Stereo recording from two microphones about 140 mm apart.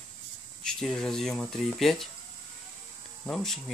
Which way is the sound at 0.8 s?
5° left (ahead or behind).